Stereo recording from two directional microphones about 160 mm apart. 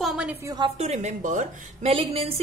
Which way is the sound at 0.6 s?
45° right (ahead or behind).